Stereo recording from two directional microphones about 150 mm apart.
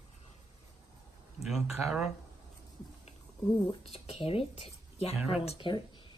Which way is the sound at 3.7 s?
40° left (ahead or behind).